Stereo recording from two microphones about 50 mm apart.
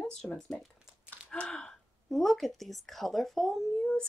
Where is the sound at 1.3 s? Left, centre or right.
Centre.